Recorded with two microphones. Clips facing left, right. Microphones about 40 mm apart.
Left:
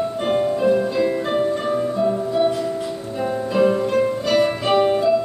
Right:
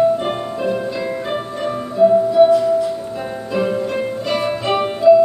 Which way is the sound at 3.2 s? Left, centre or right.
Centre.